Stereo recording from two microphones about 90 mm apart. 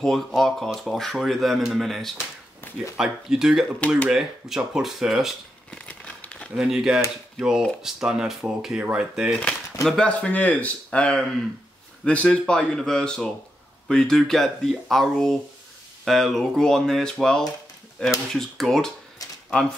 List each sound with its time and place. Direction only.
0.0 s speech: 5° left (ahead or behind)
2.6 s a sound: 20° left (ahead or behind)
3.0 s speech: 5° right (ahead or behind)
5.7 s crumpling: 10° left (ahead or behind)
6.5 s speech: 5° right (ahead or behind)
9.8 s speech: 10° left (ahead or behind)